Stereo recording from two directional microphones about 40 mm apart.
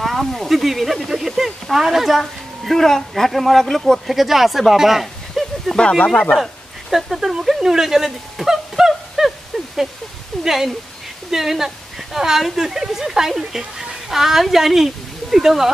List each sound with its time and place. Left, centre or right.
0.0 s speech: centre
2.8 s speech: centre
5.8 s speech: left
6.3 s speech: centre
10.4 s a woman's voice: centre